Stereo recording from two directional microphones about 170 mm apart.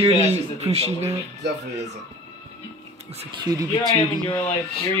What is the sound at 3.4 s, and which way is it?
Music, 25° right (ahead or behind).